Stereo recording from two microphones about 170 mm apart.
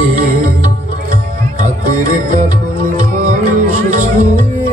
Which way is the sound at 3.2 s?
55° right (ahead or behind).